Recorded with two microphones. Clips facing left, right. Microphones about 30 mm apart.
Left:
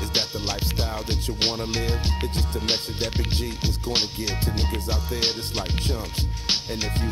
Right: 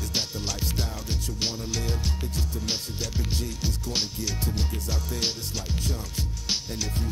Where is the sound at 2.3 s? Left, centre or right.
Left.